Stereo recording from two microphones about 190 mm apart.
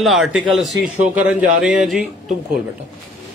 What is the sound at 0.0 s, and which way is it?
A man's voice, centre (ahead or behind).